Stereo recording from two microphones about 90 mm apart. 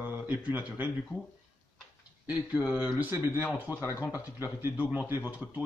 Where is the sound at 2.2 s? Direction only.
10° right (ahead or behind).